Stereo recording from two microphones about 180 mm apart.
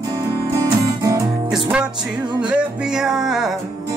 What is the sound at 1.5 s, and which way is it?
Music, 5° right (ahead or behind).